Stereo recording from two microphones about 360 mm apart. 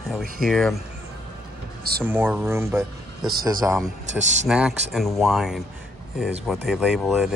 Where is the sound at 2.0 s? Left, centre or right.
Centre.